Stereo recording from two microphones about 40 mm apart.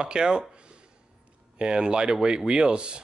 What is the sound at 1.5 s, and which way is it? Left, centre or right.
Speech, right.